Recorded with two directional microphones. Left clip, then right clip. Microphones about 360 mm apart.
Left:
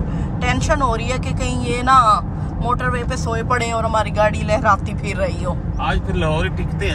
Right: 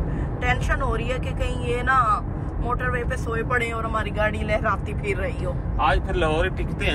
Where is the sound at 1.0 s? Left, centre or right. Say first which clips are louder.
Left 4 dB; centre.